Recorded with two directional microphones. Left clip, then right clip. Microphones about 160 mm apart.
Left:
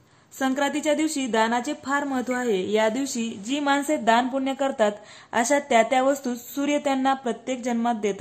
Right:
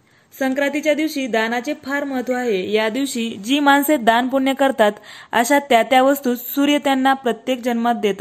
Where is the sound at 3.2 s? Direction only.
30° right (ahead or behind).